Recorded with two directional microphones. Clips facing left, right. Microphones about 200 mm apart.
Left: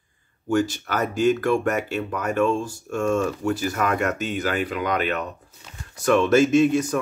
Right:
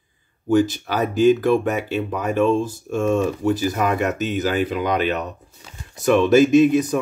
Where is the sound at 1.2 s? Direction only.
15° right (ahead or behind).